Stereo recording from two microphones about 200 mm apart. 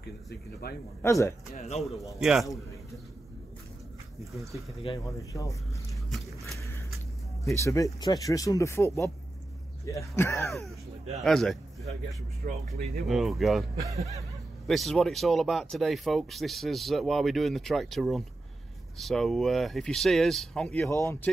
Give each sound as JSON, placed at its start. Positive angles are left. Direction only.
{"t": 0.3, "sound": "speech", "side_deg": 50}
{"t": 1.0, "sound": "speech", "side_deg": 15}
{"t": 1.8, "sound": "speech", "side_deg": 0}
{"t": 4.9, "sound": "speech", "side_deg": 25}
{"t": 5.3, "sound": "speech", "side_deg": 15}
{"t": 7.5, "sound": "speech", "side_deg": 15}
{"t": 10.4, "sound": "speech", "side_deg": 0}
{"t": 12.4, "sound": "speech", "side_deg": -50}
{"t": 13.1, "sound": "speech", "side_deg": 0}
{"t": 14.7, "sound": "speech", "side_deg": 0}